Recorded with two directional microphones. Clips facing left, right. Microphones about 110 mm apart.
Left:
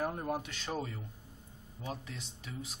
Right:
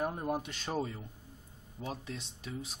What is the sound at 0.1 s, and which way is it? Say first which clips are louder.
A man's voice: right 1 dB; 10° right (ahead or behind).